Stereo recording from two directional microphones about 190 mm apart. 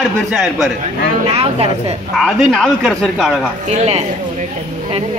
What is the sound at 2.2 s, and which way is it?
Speech, centre (ahead or behind).